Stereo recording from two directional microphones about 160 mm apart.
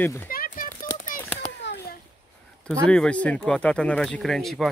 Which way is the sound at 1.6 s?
90° left.